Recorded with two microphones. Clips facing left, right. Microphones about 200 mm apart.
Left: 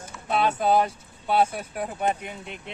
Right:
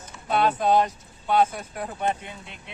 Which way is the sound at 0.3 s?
5° left (ahead or behind).